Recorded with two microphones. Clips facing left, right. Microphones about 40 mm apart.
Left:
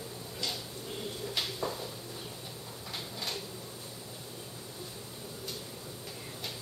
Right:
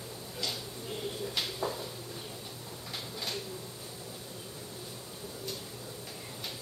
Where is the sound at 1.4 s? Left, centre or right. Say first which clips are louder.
Even; centre.